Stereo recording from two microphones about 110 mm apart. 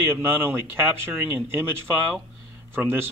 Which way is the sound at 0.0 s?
20° right (ahead or behind).